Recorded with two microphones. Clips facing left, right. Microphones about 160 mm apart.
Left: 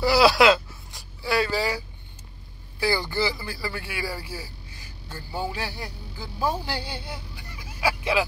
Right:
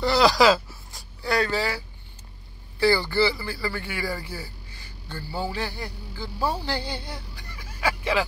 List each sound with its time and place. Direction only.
0.0 s speech: 5° left (ahead or behind)
2.8 s speech: 10° left (ahead or behind)
5.5 s music: 10° left (ahead or behind)